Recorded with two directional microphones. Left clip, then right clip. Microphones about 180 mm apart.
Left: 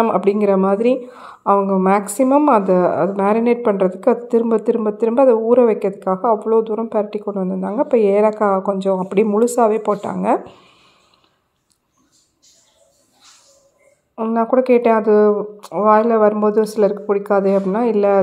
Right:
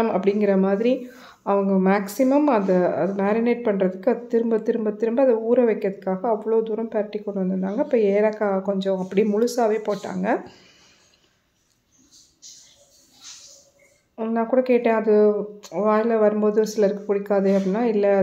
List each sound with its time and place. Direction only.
0.0 s speech: 20° left (ahead or behind)
14.1 s speech: 20° left (ahead or behind)